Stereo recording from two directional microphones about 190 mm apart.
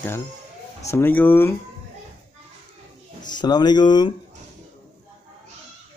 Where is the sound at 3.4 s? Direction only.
20° left (ahead or behind).